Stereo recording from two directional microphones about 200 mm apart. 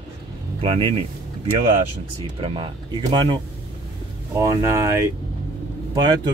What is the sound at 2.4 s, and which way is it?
Speech, 25° right (ahead or behind).